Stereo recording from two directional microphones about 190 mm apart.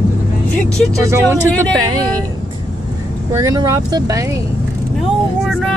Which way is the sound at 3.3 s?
15° right (ahead or behind).